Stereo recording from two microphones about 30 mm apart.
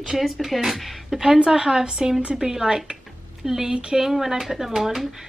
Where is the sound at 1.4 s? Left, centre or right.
Right.